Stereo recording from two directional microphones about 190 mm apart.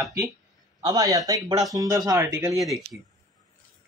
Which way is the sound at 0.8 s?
20° right (ahead or behind).